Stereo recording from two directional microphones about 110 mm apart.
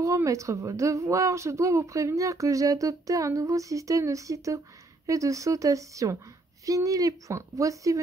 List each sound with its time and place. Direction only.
0.0 s a woman's voice: 30° right (ahead or behind)